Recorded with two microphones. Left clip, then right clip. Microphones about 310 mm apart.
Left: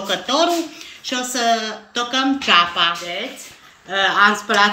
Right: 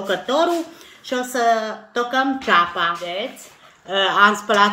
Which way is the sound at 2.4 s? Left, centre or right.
Right.